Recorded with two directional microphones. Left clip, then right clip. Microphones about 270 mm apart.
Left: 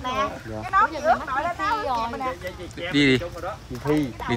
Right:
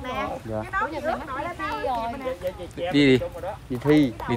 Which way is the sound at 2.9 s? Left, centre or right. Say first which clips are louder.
Right 1 dB; centre.